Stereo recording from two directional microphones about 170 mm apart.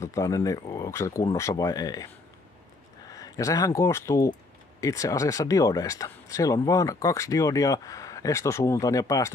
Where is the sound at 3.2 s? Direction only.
20° left (ahead or behind).